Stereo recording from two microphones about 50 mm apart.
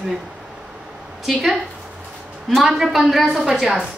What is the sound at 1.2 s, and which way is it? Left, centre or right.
A woman's voice, centre.